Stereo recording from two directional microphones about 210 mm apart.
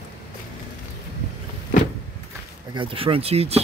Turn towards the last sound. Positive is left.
turn(degrees=-30)  # may be behind; listen again after turning